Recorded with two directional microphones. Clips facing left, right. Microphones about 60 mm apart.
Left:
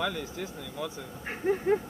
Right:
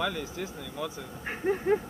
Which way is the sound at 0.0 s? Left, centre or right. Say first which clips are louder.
Right 1 dB; right.